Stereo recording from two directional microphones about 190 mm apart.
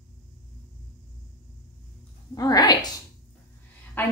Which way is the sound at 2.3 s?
20° left (ahead or behind).